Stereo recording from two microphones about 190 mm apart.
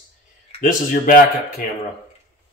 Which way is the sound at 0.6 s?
45° left (ahead or behind).